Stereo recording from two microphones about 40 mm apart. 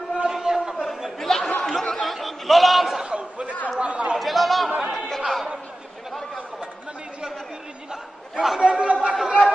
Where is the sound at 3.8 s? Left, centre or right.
Right.